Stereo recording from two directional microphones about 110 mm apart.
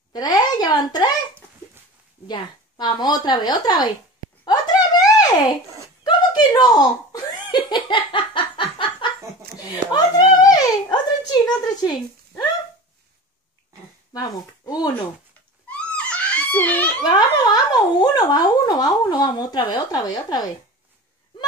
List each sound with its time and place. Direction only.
0.1 s a sound: 35° left (ahead or behind)
2.2 s speech: 45° left (ahead or behind)
4.5 s a sound: 35° left (ahead or behind)
6.0 s chuckle: 40° left (ahead or behind)
9.6 s a sound: 40° left (ahead or behind)
11.4 s speech: 40° left (ahead or behind)
14.1 s speech: 35° left (ahead or behind)
15.7 s giggle: 10° left (ahead or behind)
17.0 s speech: 40° left (ahead or behind)